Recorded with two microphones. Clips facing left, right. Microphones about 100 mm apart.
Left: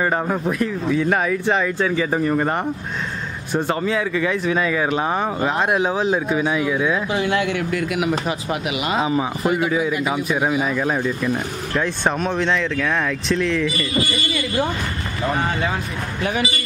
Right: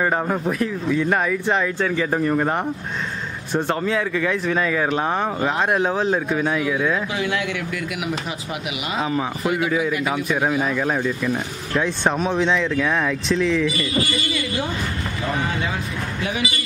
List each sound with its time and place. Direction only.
0.0 s speech: centre (ahead or behind)
7.1 s speech: 35° left (ahead or behind); by 9.0 s 50° left (ahead or behind)
9.0 s speech: 10° left (ahead or behind)